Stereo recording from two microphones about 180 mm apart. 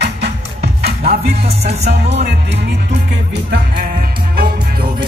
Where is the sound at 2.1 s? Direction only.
70° right (ahead or behind).